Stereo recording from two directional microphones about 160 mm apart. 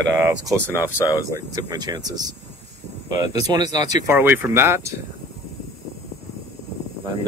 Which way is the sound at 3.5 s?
25° right (ahead or behind).